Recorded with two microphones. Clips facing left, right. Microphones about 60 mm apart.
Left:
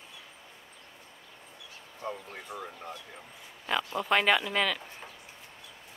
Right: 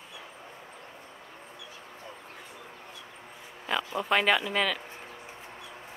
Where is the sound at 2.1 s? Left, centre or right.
Left.